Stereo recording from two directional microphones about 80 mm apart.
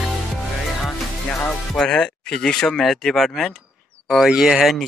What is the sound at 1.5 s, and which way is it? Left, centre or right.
Speech, centre.